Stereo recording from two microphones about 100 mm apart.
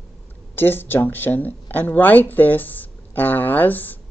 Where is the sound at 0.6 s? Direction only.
20° left (ahead or behind).